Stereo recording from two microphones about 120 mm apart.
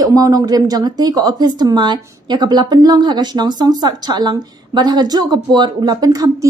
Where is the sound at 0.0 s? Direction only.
30° right (ahead or behind).